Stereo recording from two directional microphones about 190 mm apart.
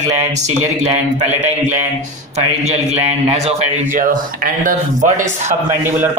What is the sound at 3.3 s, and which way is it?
Speech, 40° right (ahead or behind).